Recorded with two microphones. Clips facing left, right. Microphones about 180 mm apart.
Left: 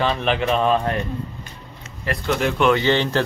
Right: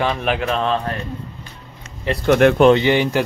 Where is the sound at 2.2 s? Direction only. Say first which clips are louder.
Right 9 dB; 60° right (ahead or behind).